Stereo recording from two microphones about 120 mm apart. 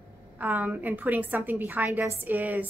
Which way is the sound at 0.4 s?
15° right (ahead or behind).